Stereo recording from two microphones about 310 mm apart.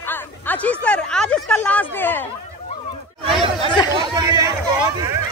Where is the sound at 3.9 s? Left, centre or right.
Centre.